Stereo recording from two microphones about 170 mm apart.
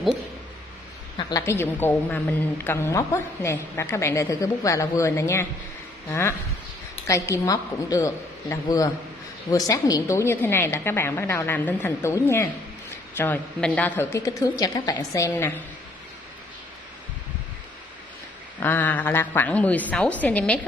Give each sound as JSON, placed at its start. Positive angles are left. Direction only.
{"t": 1.4, "sound": "a woman's voice", "side_deg": 15}
{"t": 18.6, "sound": "a woman's voice", "side_deg": 10}